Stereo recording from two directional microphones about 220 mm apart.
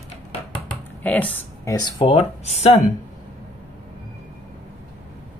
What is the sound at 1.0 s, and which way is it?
Speech, 5° left (ahead or behind).